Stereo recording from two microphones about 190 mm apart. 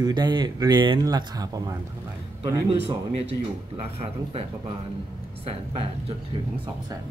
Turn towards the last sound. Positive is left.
turn(degrees=-30)  # may be behind; listen again after turning